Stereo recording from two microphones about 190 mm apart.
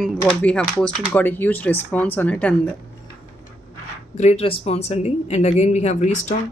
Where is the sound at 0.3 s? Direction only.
5° left (ahead or behind).